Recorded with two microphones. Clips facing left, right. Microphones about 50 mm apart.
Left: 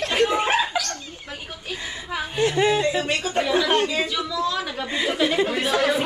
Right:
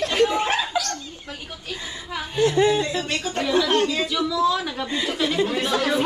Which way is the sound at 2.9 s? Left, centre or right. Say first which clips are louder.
Left 3 dB; centre.